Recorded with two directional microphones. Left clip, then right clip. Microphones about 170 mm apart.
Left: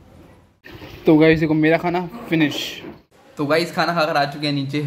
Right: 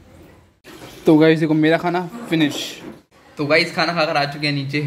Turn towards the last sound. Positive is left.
turn(degrees=20)  # may be behind; listen again after turning